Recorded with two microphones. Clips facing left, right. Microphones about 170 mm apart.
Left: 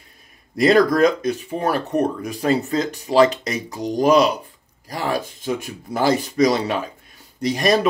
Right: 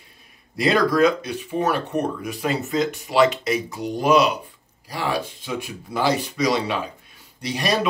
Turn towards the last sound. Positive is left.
turn(degrees=45)  # may be behind; listen again after turning